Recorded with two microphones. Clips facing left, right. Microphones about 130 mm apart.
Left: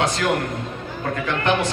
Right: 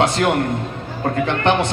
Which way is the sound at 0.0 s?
30° right (ahead or behind).